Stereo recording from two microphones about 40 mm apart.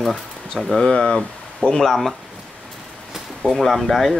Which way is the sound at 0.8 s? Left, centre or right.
Left.